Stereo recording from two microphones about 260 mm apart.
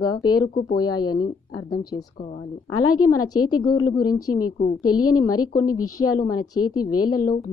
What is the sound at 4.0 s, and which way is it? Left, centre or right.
A woman's voice, left.